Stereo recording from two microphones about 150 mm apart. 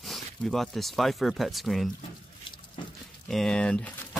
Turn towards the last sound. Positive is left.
turn(degrees=5)  # may be behind; listen again after turning